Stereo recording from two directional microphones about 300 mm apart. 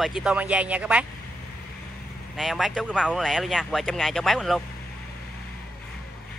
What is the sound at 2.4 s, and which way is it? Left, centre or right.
Speech, centre.